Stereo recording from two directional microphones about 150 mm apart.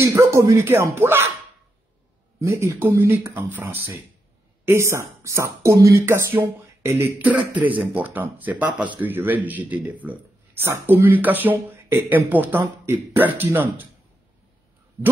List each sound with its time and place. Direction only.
0.0 s speech: 20° right (ahead or behind)
2.4 s speech: 20° right (ahead or behind)